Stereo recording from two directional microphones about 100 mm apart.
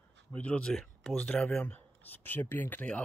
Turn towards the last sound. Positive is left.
turn(degrees=15)  # may be behind; listen again after turning